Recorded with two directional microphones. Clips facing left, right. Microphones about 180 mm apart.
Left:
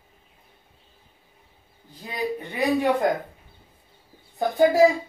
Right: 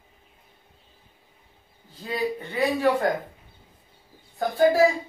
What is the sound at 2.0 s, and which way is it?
A man's voice, 15° left (ahead or behind).